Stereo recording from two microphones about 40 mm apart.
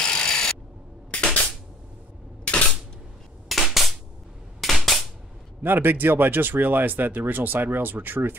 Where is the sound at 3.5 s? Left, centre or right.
Centre.